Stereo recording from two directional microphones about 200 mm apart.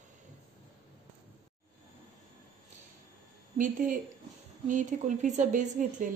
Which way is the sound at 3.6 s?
40° right (ahead or behind).